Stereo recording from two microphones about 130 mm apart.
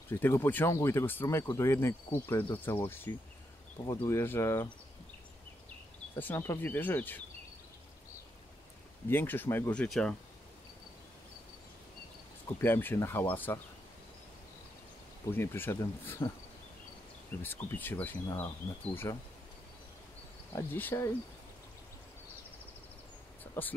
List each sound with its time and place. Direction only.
0.1 s speech: 20° left (ahead or behind)
6.1 s speech: 15° left (ahead or behind)
9.1 s speech: 15° left (ahead or behind)
12.5 s speech: 15° left (ahead or behind)
15.2 s speech: 20° left (ahead or behind)
17.4 s speech: 15° left (ahead or behind)
20.5 s speech: 15° left (ahead or behind)
23.4 s a sound: 15° left (ahead or behind)